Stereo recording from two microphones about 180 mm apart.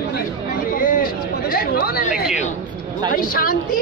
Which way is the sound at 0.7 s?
50° left (ahead or behind).